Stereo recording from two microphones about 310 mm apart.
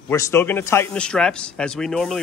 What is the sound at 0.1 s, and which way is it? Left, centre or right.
Speech, centre.